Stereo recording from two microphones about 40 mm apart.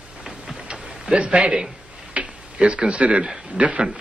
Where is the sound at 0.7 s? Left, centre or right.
Right.